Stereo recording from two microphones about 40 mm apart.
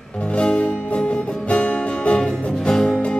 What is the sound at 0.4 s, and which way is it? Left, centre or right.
Music, left.